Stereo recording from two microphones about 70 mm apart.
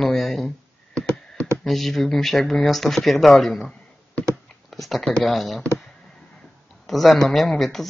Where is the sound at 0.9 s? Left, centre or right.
Centre.